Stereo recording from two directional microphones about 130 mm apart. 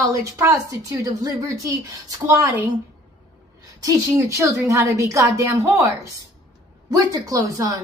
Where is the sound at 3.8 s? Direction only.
25° right (ahead or behind).